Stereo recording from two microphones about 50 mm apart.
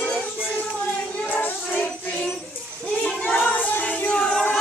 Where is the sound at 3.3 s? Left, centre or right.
Left; by 4.4 s centre.